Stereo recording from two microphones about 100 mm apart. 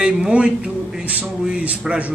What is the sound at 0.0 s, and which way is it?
Speech, 10° right (ahead or behind).